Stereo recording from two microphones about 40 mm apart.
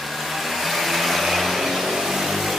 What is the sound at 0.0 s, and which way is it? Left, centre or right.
Vehicle, centre.